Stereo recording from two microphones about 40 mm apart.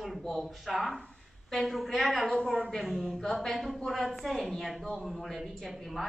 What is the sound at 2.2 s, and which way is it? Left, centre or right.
Speech, centre.